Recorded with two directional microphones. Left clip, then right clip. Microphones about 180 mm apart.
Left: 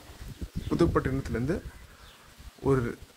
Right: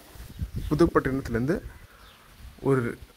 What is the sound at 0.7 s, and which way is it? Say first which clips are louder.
Speech: right 4 dB; 30° right (ahead or behind).